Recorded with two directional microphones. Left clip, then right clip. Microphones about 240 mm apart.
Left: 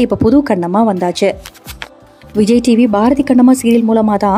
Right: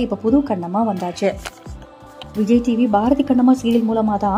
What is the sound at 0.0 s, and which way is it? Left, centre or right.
A woman's voice, left.